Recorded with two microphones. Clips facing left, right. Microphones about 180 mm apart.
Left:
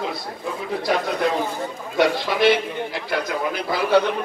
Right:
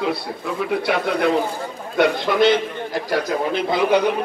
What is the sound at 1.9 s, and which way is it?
Speech, 55° right (ahead or behind).